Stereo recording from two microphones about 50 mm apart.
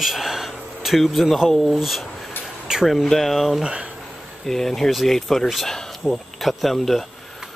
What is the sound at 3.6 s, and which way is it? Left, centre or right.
Speech, right.